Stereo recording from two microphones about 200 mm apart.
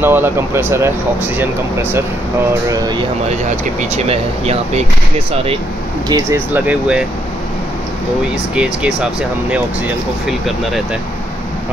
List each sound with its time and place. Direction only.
0.0 s speech: 10° right (ahead or behind)
3.3 s speech: 35° right (ahead or behind)
6.5 s speech: 5° right (ahead or behind)
8.5 s speech: 5° right (ahead or behind)